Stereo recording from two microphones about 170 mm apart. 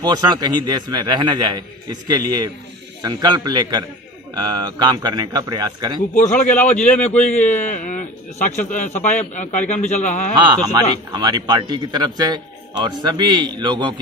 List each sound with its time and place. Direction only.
0.0 s speech: 25° right (ahead or behind)
6.1 s speech: 50° left (ahead or behind)
6.4 s a man's voice: 10° left (ahead or behind)
7.3 s speech: 45° left (ahead or behind)
10.3 s speech: 25° right (ahead or behind)